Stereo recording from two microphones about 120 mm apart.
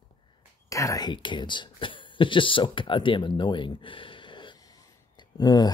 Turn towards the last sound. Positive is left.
turn(degrees=35)  # may be behind; listen again after turning